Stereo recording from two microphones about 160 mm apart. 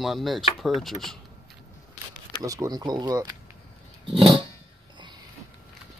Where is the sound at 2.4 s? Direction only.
20° right (ahead or behind).